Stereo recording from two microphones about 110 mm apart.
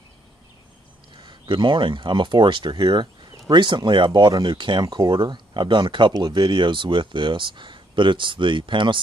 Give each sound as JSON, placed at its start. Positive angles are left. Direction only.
{"t": 1.2, "sound": "speech", "side_deg": -45}